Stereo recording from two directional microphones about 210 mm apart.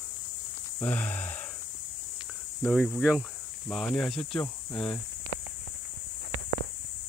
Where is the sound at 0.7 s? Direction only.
10° left (ahead or behind).